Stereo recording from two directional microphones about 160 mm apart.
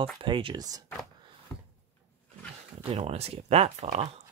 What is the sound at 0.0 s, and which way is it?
Speech, 30° right (ahead or behind).